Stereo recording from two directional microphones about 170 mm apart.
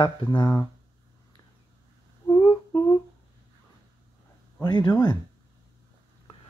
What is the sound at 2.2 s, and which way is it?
Humming, 30° left (ahead or behind).